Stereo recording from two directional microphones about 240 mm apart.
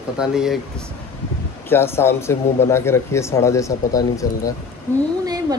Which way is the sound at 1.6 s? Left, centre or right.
Centre.